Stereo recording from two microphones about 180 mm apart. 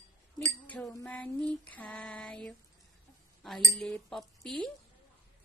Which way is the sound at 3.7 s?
Centre (ahead or behind).